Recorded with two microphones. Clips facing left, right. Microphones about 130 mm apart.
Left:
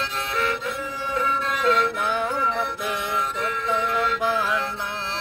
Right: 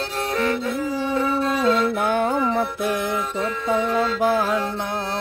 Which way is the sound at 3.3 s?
35° right (ahead or behind).